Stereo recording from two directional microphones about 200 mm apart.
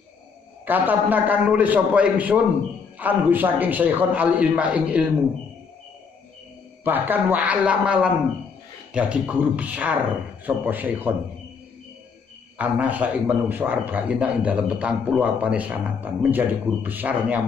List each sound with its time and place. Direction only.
0.7 s a man's voice: 10° right (ahead or behind)
6.8 s a man's voice: 10° right (ahead or behind)
12.5 s a man's voice: 5° right (ahead or behind)